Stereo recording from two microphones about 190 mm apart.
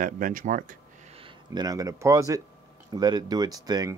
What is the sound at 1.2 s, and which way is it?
Speech, 25° right (ahead or behind).